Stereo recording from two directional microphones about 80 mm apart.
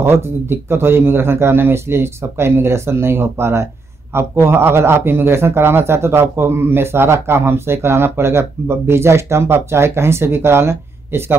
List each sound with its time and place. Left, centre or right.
0.0 s a man's voice: right